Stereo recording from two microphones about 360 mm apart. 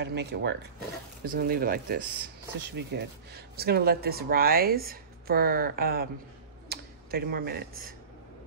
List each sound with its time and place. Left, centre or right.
0.0 s speech: right